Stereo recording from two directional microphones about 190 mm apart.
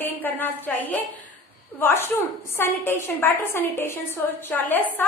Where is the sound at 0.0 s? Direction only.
10° left (ahead or behind).